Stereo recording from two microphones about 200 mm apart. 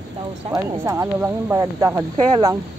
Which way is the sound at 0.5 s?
15° right (ahead or behind).